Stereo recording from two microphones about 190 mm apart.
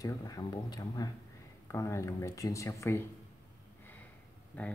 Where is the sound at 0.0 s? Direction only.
20° left (ahead or behind).